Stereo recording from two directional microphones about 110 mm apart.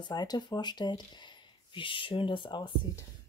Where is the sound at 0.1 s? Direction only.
40° left (ahead or behind).